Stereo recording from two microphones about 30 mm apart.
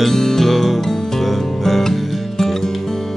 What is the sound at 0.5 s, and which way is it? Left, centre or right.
Music, centre.